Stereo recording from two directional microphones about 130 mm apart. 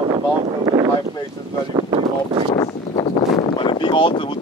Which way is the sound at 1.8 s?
40° right (ahead or behind).